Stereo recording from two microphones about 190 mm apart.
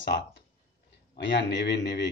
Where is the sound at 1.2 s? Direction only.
65° left (ahead or behind).